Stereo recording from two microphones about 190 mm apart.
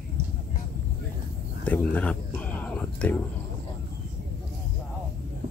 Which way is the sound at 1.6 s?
10° left (ahead or behind).